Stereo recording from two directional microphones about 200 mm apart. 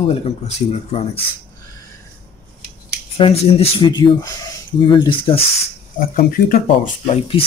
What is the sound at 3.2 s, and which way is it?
Speech, 30° left (ahead or behind).